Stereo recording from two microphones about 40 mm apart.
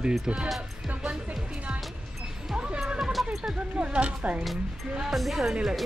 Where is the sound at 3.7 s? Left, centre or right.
Right.